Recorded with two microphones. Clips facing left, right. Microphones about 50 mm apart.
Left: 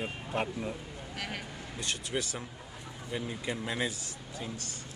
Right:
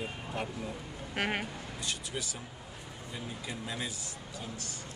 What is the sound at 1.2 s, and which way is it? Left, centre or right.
Speech, right.